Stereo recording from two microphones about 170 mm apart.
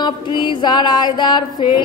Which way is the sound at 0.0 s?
25° left (ahead or behind).